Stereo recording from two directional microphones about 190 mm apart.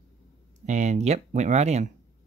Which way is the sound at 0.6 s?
40° right (ahead or behind).